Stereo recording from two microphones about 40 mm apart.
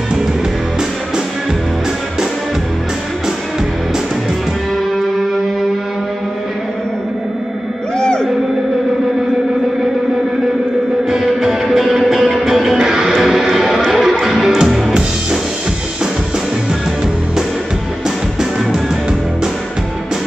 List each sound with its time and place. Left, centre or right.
4.9 s music: centre
8.0 s music: left
11.1 s music: centre